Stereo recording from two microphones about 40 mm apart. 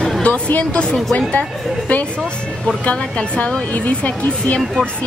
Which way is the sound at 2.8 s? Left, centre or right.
Left.